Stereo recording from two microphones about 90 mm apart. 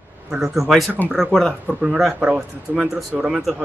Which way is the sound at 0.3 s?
5° right (ahead or behind).